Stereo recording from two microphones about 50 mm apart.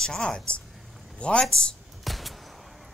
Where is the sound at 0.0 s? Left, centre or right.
Centre.